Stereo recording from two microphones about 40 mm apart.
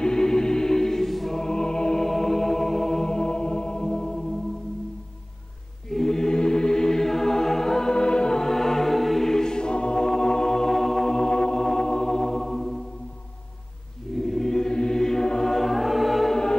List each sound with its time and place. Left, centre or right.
0.0 s music: centre
2.0 s music: centre
3.1 s music: centre
5.9 s music: centre
11.1 s music: left; by 12.7 s centre
14.1 s choir: centre
15.6 s music: centre